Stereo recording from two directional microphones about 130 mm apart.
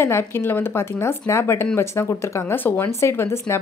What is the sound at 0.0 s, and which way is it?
Speech, 20° left (ahead or behind).